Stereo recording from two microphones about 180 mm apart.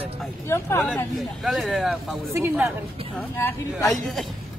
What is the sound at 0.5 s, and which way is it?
Speech, 15° left (ahead or behind).